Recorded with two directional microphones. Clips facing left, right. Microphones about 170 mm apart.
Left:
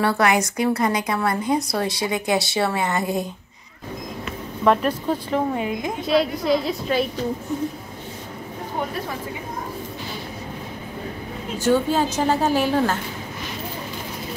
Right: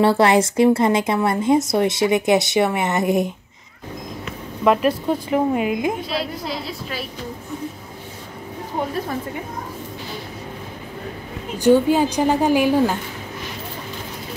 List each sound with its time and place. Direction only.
0.0 s speech: 25° right (ahead or behind)
4.6 s a woman's voice: 10° right (ahead or behind)
11.5 s a woman's voice: 15° right (ahead or behind)